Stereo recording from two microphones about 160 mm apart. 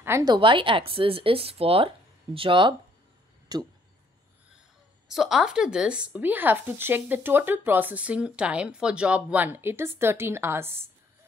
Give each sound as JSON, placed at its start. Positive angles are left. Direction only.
{"t": 0.0, "sound": "speech", "side_deg": -15}
{"t": 0.3, "sound": "speech", "side_deg": -30}
{"t": 5.0, "sound": "speech", "side_deg": -5}